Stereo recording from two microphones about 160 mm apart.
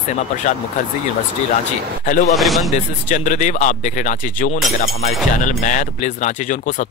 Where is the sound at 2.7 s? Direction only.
50° left (ahead or behind).